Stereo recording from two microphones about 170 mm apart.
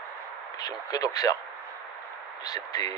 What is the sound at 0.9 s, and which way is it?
Speech, 20° left (ahead or behind).